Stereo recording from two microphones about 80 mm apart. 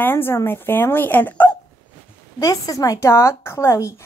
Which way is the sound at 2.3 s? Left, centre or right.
Left.